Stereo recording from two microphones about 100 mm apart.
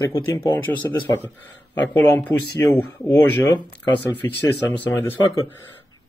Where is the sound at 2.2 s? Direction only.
20° left (ahead or behind).